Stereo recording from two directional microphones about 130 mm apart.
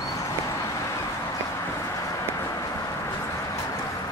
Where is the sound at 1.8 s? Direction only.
25° left (ahead or behind).